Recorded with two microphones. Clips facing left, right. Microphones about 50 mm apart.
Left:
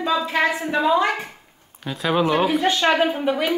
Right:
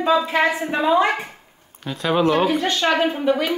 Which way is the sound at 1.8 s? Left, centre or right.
Centre.